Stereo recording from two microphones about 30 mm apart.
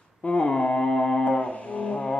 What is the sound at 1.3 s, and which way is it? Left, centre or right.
Music, left.